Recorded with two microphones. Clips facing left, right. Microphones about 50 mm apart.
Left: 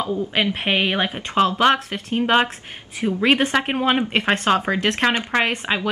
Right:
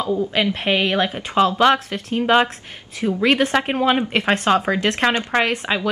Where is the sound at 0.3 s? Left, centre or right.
Centre.